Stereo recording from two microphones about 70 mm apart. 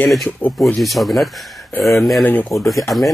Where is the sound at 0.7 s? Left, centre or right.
Centre.